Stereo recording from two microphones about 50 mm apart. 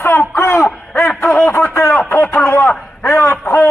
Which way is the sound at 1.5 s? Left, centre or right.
Left.